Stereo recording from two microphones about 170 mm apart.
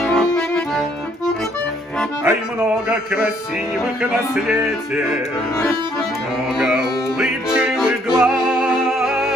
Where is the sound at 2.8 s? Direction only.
5° right (ahead or behind).